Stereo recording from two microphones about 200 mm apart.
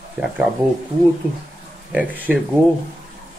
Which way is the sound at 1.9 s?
10° right (ahead or behind).